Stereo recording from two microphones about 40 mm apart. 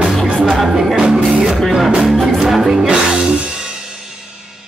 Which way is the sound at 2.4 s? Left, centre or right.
Centre.